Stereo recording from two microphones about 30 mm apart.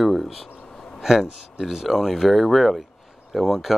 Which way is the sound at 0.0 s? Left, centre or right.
Centre.